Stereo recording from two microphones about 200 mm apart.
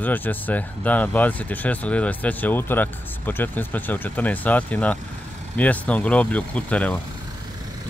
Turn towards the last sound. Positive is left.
turn(degrees=5)  # may be behind; listen again after turning